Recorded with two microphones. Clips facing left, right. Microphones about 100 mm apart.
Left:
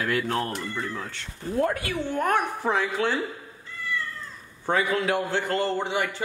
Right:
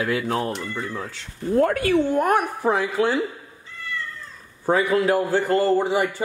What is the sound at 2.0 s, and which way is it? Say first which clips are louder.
Speech: right 5 dB; 15° right (ahead or behind).